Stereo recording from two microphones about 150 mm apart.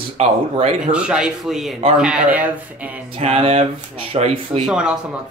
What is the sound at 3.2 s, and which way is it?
Speech, 45° right (ahead or behind).